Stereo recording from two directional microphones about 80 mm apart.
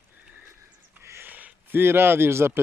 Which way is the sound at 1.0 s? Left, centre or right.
Right.